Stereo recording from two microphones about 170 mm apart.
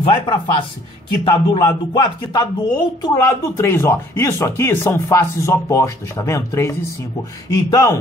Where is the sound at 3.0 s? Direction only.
15° left (ahead or behind).